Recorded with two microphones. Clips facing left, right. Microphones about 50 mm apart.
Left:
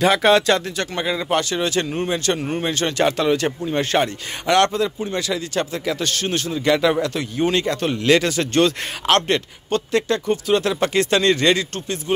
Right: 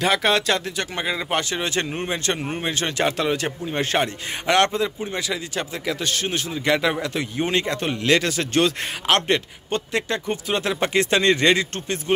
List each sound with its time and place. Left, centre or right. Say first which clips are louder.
0.0 s speech: left 5 dB; centre
0.9 s speech: left 4 dB; centre
2.4 s speech: left 3 dB; centre
8.1 s speech: left 3 dB; centre; by 12.0 s right